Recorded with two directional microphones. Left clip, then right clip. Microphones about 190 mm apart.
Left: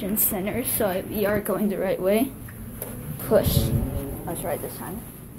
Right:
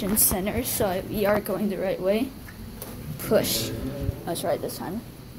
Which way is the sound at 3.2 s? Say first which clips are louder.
Left 2 dB; 10° right (ahead or behind).